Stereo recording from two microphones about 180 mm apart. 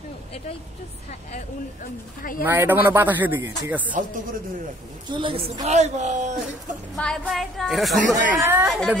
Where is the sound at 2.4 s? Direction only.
10° right (ahead or behind).